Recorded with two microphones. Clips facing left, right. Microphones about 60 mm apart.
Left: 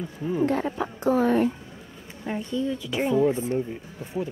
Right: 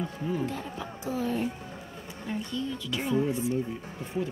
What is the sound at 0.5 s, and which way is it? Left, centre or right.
A woman's voice, left.